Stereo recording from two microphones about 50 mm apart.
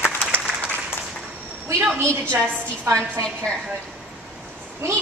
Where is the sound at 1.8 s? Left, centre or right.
Right.